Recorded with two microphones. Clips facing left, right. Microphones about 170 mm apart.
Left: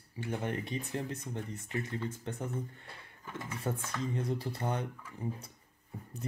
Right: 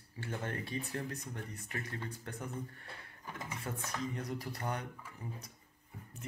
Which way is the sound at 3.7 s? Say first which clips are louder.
Left 4 dB; 25° left (ahead or behind).